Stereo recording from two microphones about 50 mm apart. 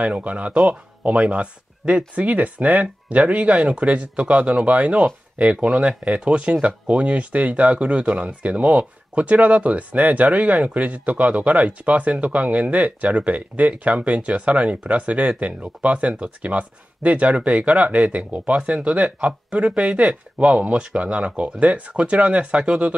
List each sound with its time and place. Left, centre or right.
0.0 s speech: right